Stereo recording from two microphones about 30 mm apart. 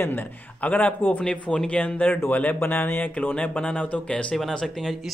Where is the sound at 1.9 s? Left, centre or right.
Left.